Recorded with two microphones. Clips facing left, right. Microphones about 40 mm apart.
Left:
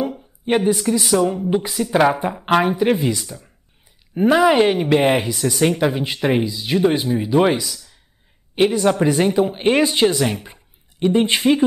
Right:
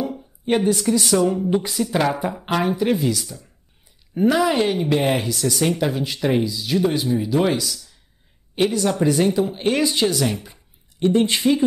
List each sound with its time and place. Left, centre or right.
0.1 s a sound: centre
0.7 s speech: centre
1.9 s speech: left